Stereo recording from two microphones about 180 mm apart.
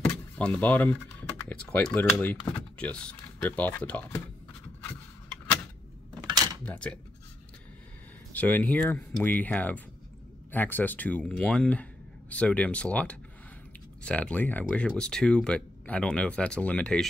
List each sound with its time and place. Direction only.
0.0 s door: 10° left (ahead or behind)
1.7 s speech: 5° left (ahead or behind)
6.2 s a sound: 20° right (ahead or behind)
6.6 s speech: 5° left (ahead or behind)
8.3 s speech: 10° left (ahead or behind)